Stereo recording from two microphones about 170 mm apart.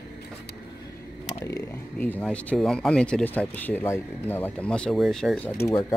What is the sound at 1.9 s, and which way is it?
Speech, 10° left (ahead or behind).